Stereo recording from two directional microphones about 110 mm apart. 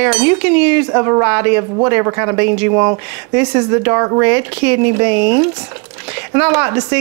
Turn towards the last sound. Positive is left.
turn(degrees=-25)  # may be behind; listen again after turning